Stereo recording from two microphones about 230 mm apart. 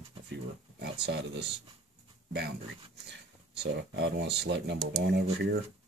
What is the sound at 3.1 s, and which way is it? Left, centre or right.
Speech, right.